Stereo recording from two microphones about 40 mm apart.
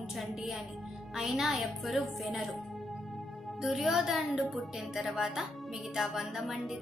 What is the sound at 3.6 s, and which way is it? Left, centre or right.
A woman's voice, centre.